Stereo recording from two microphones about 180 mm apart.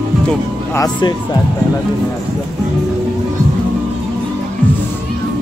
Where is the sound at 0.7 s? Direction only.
20° left (ahead or behind).